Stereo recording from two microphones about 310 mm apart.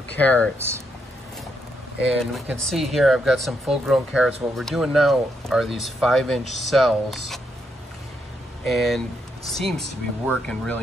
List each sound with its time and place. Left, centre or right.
0.1 s speech: centre
0.6 s speech: centre
2.0 s speech: centre
8.6 s speech: centre